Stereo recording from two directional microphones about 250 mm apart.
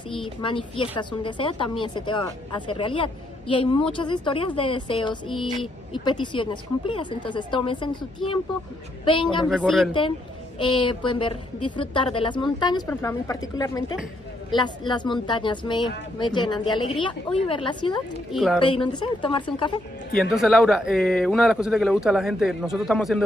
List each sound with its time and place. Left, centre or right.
0.2 s a woman's voice: centre
9.0 s a woman's voice: centre
9.5 s speech: centre
10.6 s a woman's voice: centre
18.3 s speech: centre
18.6 s a woman's voice: centre
20.2 s speech: centre